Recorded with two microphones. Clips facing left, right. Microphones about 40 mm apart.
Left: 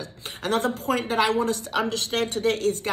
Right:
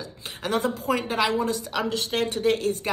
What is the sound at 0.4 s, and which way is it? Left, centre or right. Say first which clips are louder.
A woman's voice: left 1 dB; left.